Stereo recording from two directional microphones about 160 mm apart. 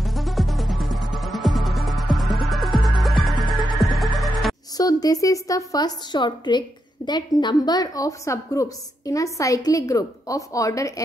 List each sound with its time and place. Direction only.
0.0 s music: centre (ahead or behind)
4.7 s a woman's voice: 25° left (ahead or behind)